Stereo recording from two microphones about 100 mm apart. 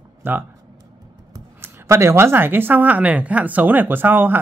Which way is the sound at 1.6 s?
25° right (ahead or behind).